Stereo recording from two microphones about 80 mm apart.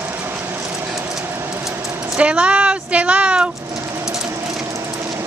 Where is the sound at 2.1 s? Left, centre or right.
Centre.